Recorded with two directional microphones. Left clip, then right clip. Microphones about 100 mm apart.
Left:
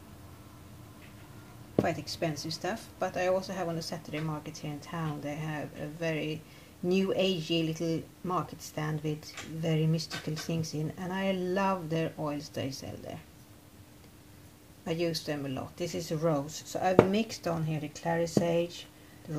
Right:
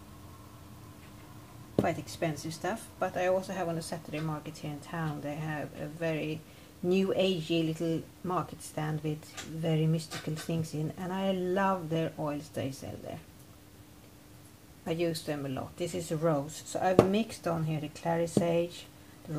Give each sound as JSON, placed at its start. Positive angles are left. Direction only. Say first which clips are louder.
{"t": 1.8, "sound": "speech", "louder": "even", "side_deg": -5}
{"t": 15.0, "sound": "speech", "louder": "even", "side_deg": 0}